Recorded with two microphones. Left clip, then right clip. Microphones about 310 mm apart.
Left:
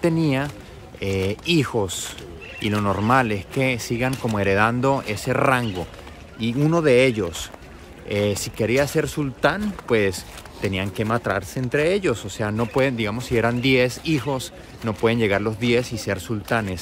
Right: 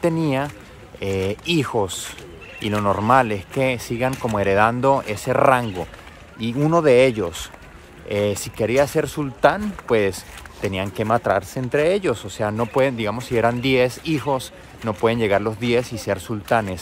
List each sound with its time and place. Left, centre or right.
0.0 s speech: centre